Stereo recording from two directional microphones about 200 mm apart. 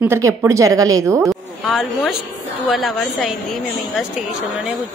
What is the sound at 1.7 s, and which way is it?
A woman's voice, centre (ahead or behind).